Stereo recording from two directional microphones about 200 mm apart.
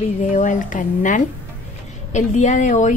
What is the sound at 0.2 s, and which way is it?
A woman's voice, 40° left (ahead or behind).